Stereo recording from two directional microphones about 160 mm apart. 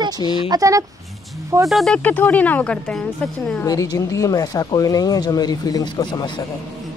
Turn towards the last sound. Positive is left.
turn(degrees=30)  # may be behind; listen again after turning